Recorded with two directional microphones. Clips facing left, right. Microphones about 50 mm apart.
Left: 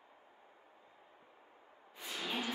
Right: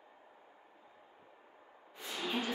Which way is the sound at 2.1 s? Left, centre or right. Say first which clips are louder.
Right 2 dB; centre.